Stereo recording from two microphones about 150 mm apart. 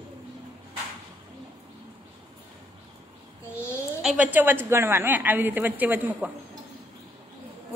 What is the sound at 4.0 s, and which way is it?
A woman's voice, 5° right (ahead or behind).